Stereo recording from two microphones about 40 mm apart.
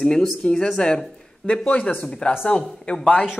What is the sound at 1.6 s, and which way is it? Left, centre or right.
Speech, left.